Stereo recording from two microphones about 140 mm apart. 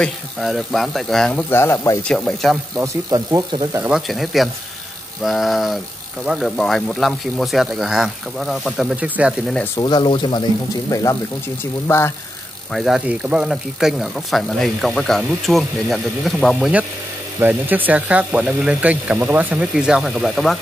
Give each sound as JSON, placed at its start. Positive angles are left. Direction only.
{"t": 0.0, "sound": "speech", "side_deg": 0}
{"t": 1.5, "sound": "speech", "side_deg": 15}
{"t": 2.0, "sound": "speech", "side_deg": 0}
{"t": 2.8, "sound": "speech", "side_deg": -25}
{"t": 3.9, "sound": "speech", "side_deg": 0}
{"t": 9.8, "sound": "speech", "side_deg": 30}
{"t": 10.9, "sound": "speech", "side_deg": 25}
{"t": 12.7, "sound": "speech", "side_deg": -5}
{"t": 17.4, "sound": "speech", "side_deg": -15}